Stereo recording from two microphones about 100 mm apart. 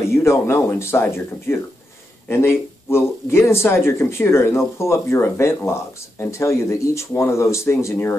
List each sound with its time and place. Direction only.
0.1 s speech: 25° left (ahead or behind)